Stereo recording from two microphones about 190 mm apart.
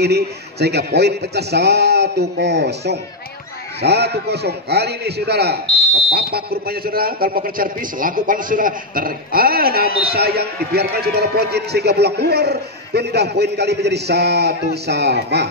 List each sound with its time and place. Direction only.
0.0 s a man's voice: 60° right (ahead or behind)